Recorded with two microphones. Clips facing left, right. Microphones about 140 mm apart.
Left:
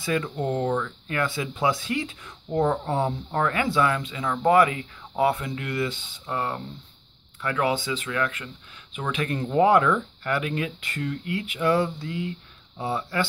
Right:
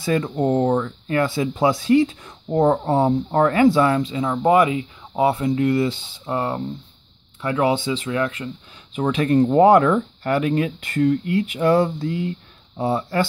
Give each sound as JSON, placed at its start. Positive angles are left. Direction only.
{"t": 0.0, "sound": "speech", "side_deg": -35}